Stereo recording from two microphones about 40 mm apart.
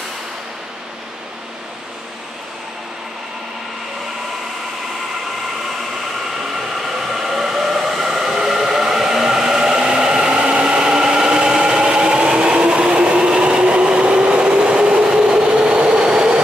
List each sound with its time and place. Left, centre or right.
6.5 s train: centre
9.8 s vehicle: right
10.3 s a sound: right